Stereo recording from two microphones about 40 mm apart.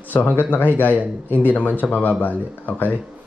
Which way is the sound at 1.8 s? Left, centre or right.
Centre.